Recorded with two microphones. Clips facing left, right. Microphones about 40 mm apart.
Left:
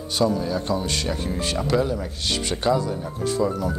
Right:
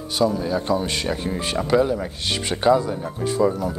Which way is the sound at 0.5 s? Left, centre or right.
Centre.